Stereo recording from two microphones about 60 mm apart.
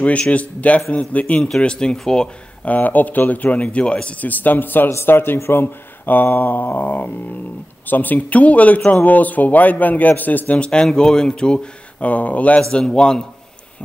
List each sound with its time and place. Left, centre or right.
0.0 s a man's voice: left
2.6 s a man's voice: left